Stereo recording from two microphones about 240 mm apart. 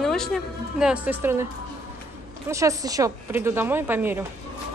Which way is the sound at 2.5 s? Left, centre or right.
Centre.